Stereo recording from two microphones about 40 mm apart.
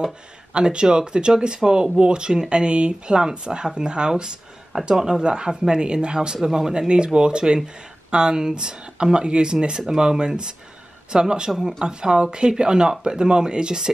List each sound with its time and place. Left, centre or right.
0.5 s speech: right